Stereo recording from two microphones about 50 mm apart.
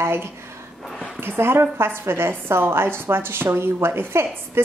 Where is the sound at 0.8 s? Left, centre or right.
Centre.